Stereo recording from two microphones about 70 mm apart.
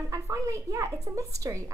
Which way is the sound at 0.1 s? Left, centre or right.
Right.